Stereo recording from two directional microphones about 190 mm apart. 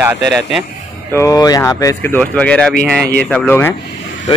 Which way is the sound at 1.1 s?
15° left (ahead or behind).